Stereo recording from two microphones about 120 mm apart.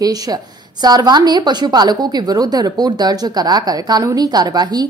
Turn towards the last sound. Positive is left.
turn(degrees=-35)  # may be behind; listen again after turning